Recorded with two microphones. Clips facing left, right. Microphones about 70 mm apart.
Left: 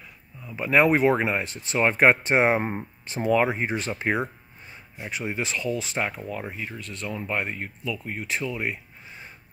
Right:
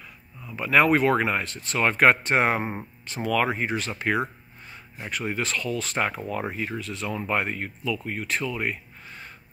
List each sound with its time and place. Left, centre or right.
0.5 s speech: left
5.2 s speech: centre
8.5 s a sound: centre